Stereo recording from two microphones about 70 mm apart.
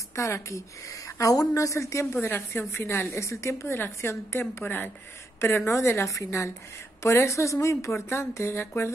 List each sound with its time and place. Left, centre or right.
0.1 s a woman's voice: left
2.2 s a woman's voice: left